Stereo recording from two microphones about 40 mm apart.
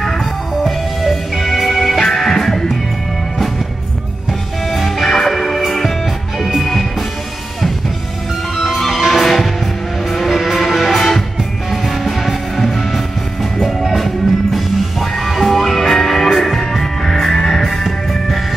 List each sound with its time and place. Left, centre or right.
0.0 s music: centre
4.3 s music: centre
8.5 s music: centre